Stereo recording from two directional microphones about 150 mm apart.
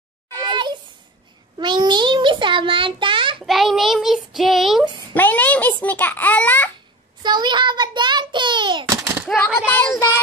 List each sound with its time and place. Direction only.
0.5 s a sound: 30° right (ahead or behind)
3.4 s child singing: centre (ahead or behind)
5.1 s a child's voice: 10° left (ahead or behind)
7.2 s a child's voice: 30° right (ahead or behind)
9.0 s a sound: 15° right (ahead or behind)
9.7 s a child's voice: 15° left (ahead or behind)